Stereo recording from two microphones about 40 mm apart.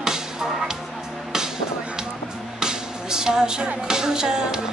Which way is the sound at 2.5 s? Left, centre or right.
Centre.